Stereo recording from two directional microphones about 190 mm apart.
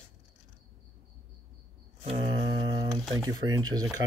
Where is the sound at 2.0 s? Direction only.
30° right (ahead or behind).